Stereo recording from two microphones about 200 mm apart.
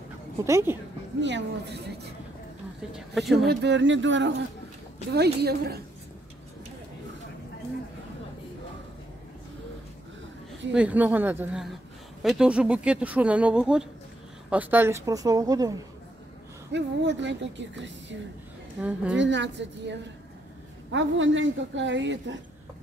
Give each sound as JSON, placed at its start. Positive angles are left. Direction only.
{"t": 0.5, "sound": "speech", "side_deg": -15}
{"t": 1.2, "sound": "a woman's voice", "side_deg": -60}
{"t": 2.9, "sound": "speech", "side_deg": 0}
{"t": 3.4, "sound": "speech", "side_deg": -60}
{"t": 5.1, "sound": "a woman's voice", "side_deg": -55}
{"t": 10.7, "sound": "speech", "side_deg": -5}
{"t": 16.7, "sound": "a woman's voice", "side_deg": -60}
{"t": 18.8, "sound": "speech", "side_deg": -5}
{"t": 19.1, "sound": "a woman's voice", "side_deg": -65}